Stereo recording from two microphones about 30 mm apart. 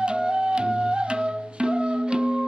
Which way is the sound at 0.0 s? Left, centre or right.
Right.